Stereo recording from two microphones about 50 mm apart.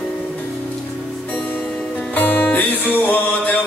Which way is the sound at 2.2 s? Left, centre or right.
Left.